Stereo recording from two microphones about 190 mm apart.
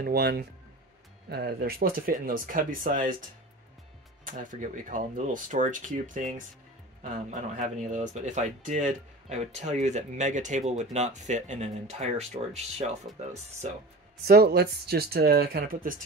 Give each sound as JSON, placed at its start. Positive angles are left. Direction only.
{"t": 0.0, "sound": "speech", "side_deg": -55}
{"t": 4.3, "sound": "speech", "side_deg": -45}
{"t": 14.2, "sound": "speech", "side_deg": -55}